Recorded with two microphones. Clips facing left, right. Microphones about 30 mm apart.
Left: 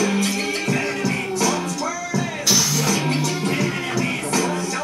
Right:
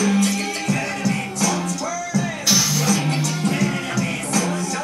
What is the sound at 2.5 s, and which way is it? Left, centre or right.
Music, centre.